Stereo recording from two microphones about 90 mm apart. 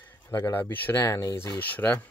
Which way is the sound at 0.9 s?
40° left (ahead or behind).